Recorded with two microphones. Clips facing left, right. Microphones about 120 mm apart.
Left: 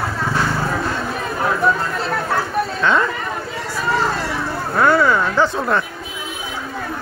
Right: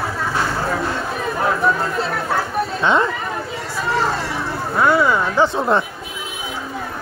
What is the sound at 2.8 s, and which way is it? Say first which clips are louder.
Speech: right 1 dB; 25° right (ahead or behind).